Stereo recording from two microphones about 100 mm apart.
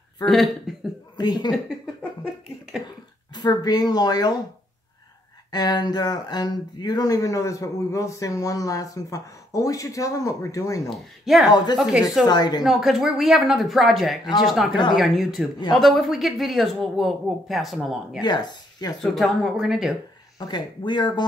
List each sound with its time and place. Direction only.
0.2 s speech: 5° left (ahead or behind)
1.1 s speech: 45° left (ahead or behind)
3.3 s speech: 40° left (ahead or behind)
5.5 s speech: 45° left (ahead or behind)
10.9 s speech: centre (ahead or behind)
11.5 s speech: 45° left (ahead or behind)
12.6 s speech: 5° right (ahead or behind)
14.7 s speech: 50° left (ahead or behind)
15.0 s speech: centre (ahead or behind)
18.2 s speech: 45° left (ahead or behind)
19.1 s speech: centre (ahead or behind)
20.3 s speech: 45° left (ahead or behind)